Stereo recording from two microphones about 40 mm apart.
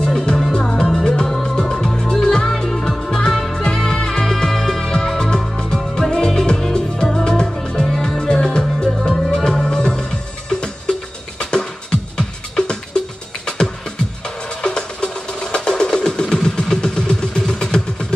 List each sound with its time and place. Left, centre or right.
0.0 s music: centre
16.4 s vehicle: centre